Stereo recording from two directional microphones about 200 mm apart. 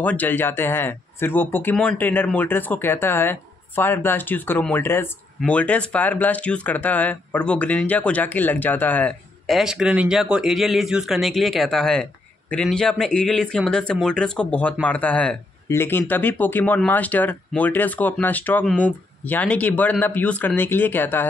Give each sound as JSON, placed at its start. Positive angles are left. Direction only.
{"t": 0.0, "sound": "speech", "side_deg": 10}